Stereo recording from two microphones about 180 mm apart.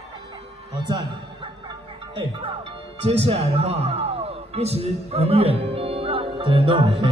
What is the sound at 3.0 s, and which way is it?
Speech, 35° right (ahead or behind).